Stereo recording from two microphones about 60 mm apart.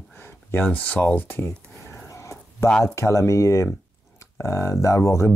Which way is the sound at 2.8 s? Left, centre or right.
Left.